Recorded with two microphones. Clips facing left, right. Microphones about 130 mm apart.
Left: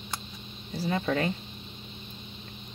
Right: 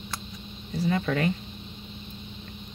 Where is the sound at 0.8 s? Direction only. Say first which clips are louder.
Right 2 dB; 25° left (ahead or behind).